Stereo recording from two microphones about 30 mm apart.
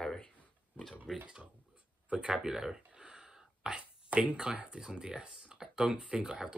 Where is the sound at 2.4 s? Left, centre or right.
Centre.